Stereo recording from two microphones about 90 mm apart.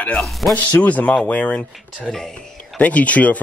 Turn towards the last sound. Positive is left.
turn(degrees=15)  # may be behind; listen again after turning